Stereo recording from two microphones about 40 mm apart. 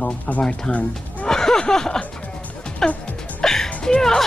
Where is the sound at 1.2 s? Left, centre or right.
Centre.